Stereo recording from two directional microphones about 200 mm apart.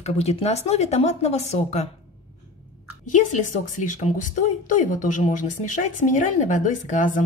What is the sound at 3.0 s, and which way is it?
A woman's voice, 40° left (ahead or behind).